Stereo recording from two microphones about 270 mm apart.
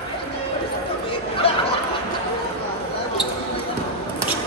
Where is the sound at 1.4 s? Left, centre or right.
Left.